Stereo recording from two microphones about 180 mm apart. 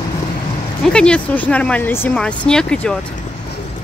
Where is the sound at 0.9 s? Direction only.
5° left (ahead or behind).